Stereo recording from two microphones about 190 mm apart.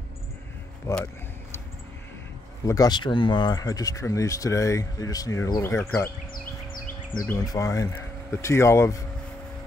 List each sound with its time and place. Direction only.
0.9 s speech: 15° left (ahead or behind)
2.6 s speech: 20° left (ahead or behind)
7.2 s speech: 15° left (ahead or behind)